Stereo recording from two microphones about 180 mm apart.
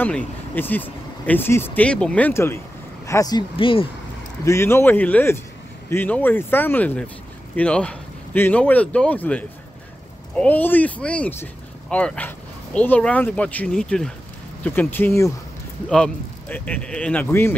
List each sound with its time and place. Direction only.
0.0 s speech: 10° left (ahead or behind); by 3.8 s 30° left (ahead or behind)
4.5 s speech: 15° left (ahead or behind)